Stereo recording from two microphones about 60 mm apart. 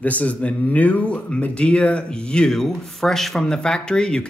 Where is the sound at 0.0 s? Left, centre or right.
Left.